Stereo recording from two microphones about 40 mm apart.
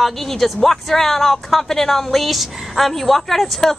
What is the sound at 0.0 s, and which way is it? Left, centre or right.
A woman's voice, centre.